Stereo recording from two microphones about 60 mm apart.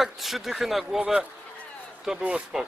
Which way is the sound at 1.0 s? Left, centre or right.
Centre.